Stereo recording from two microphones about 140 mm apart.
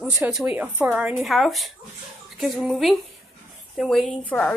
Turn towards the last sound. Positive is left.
turn(degrees=5)  # may be behind; listen again after turning